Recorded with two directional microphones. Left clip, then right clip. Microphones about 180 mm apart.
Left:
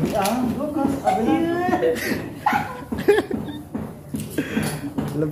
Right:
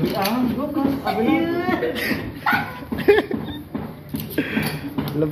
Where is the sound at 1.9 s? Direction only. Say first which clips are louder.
Left 1 dB; 5° left (ahead or behind).